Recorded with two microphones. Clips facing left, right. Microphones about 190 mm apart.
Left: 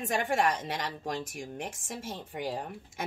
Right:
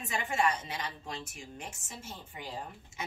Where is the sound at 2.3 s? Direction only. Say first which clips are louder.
Left 9 dB; 60° left (ahead or behind).